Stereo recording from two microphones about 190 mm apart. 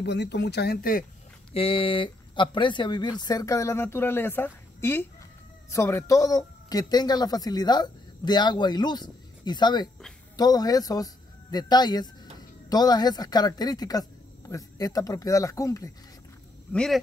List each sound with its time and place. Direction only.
0.0 s speech: 65° left (ahead or behind); by 1.0 s 50° left (ahead or behind)
1.5 s speech: 30° left (ahead or behind)
16.7 s speech: 5° left (ahead or behind)